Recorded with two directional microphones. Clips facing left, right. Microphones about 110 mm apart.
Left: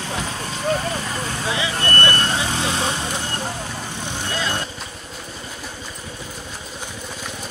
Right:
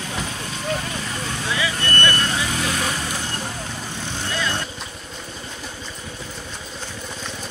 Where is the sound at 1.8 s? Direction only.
40° left (ahead or behind).